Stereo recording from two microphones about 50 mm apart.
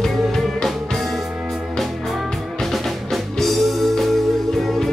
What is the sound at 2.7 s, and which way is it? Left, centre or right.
Music, centre.